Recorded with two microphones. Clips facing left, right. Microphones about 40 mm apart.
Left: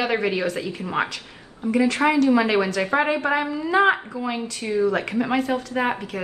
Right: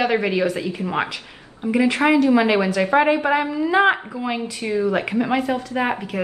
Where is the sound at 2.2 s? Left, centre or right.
Right.